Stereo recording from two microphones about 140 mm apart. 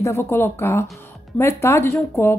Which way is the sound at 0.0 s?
20° left (ahead or behind).